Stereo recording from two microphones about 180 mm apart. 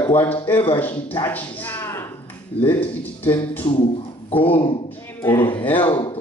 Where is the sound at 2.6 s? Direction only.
30° left (ahead or behind).